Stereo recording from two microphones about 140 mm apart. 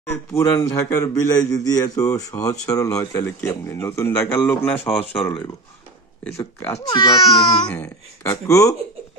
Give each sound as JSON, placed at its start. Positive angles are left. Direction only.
{"t": 0.1, "sound": "speech", "side_deg": 15}
{"t": 4.8, "sound": "speech", "side_deg": 45}
{"t": 6.2, "sound": "speech", "side_deg": 15}
{"t": 7.6, "sound": "speech", "side_deg": 10}